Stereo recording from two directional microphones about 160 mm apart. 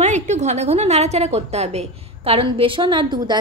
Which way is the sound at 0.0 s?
45° right (ahead or behind).